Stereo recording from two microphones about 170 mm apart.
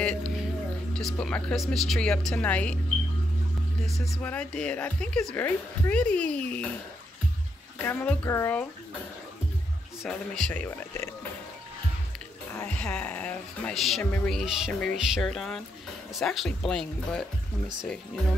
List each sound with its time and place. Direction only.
0.0 s music: 5° left (ahead or behind)
0.9 s speech: 5° left (ahead or behind)
3.8 s speech: centre (ahead or behind)
7.8 s speech: 10° left (ahead or behind)
10.0 s speech: 5° left (ahead or behind)
12.7 s speech: 5° left (ahead or behind)